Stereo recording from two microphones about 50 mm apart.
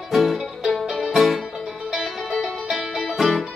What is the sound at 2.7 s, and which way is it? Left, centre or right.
Music, centre.